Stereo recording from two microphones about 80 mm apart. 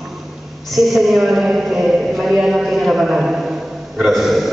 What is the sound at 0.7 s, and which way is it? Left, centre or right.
A woman's voice, centre.